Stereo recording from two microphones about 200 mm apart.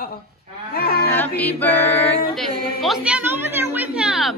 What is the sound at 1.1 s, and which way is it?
Female singing, 10° left (ahead or behind).